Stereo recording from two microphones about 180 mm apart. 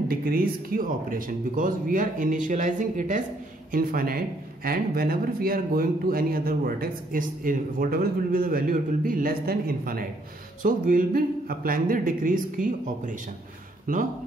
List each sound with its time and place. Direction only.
0.1 s speech: 55° right (ahead or behind)